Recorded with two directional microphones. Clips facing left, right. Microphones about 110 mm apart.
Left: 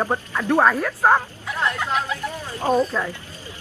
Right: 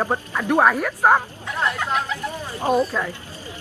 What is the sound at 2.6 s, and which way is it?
Speech, 15° right (ahead or behind).